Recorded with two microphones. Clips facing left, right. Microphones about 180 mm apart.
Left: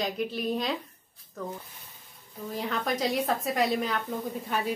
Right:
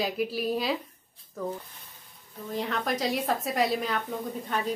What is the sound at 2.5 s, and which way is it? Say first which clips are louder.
A woman's voice: right 1 dB; centre (ahead or behind).